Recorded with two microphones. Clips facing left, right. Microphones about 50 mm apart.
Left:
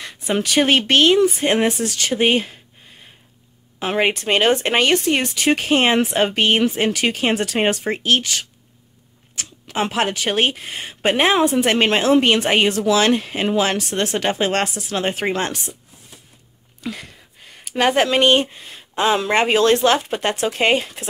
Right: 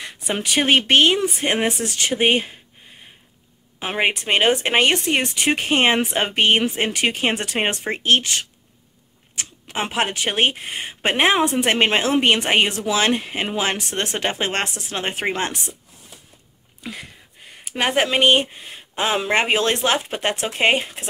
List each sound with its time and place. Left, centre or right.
0.0 s speech: centre
3.8 s speech: centre
4.8 s speech: right
9.3 s speech: right
16.8 s a sound: centre
17.6 s speech: centre